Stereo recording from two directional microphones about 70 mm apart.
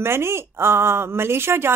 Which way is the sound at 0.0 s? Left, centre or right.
Right.